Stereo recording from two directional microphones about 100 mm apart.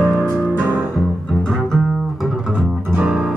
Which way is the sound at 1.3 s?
5° left (ahead or behind).